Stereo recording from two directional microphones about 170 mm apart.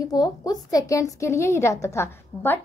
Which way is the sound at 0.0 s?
20° left (ahead or behind).